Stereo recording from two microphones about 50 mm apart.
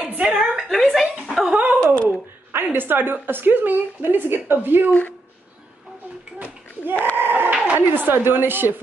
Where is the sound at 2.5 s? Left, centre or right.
Right.